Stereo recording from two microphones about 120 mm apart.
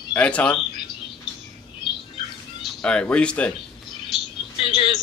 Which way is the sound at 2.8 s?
10° left (ahead or behind).